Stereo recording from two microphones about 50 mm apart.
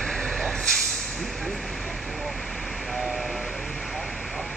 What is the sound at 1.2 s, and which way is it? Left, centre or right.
Vehicle, centre.